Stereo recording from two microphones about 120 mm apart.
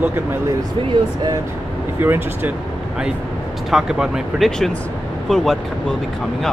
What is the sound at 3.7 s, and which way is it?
Speech, 5° right (ahead or behind).